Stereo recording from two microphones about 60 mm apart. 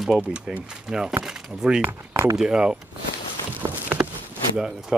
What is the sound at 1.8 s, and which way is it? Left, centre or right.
Speech, right.